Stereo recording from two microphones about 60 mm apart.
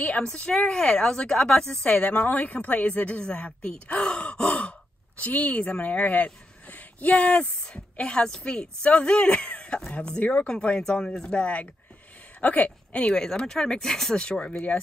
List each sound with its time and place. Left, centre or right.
0.0 s speech: centre
2.0 s a woman's voice: left